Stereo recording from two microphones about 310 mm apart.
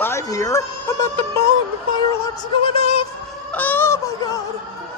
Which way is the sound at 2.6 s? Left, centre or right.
Centre.